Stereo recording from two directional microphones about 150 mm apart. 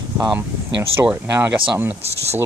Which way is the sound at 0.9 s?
15° right (ahead or behind).